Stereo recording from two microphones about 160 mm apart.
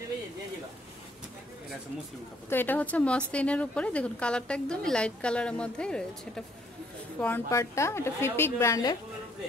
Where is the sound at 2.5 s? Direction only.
10° left (ahead or behind).